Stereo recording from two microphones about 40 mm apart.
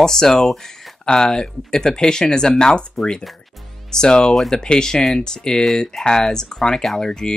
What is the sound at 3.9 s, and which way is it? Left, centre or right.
Speech, centre.